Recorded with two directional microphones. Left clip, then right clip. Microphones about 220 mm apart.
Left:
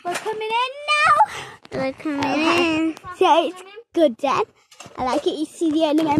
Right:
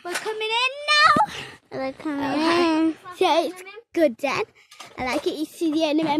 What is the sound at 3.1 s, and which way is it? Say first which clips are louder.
Speech: left 5 dB; 10° right (ahead or behind).